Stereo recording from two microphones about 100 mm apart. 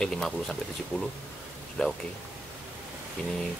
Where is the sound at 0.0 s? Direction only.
5° left (ahead or behind).